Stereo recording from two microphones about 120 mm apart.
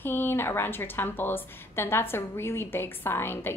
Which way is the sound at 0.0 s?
20° left (ahead or behind).